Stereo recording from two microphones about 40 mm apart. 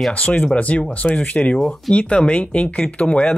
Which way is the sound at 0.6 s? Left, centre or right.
Left.